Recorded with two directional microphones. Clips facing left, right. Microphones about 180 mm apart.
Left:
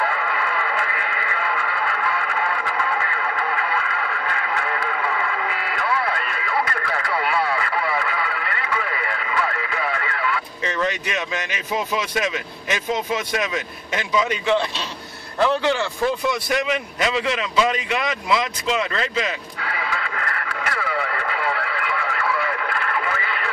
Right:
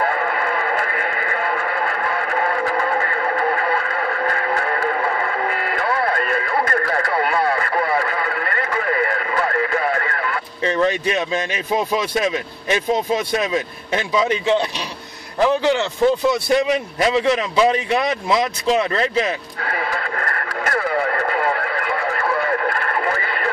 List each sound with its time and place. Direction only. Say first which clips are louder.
0.0 s radio: right 4 dB; 45° right (ahead or behind)
10.6 s a man's voice: right 8 dB; 35° right (ahead or behind)
19.6 s radio: right 3 dB; 45° right (ahead or behind)